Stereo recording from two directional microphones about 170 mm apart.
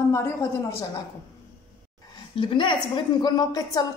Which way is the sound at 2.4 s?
30° left (ahead or behind).